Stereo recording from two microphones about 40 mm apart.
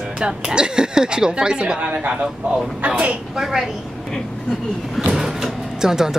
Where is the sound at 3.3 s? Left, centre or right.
Centre.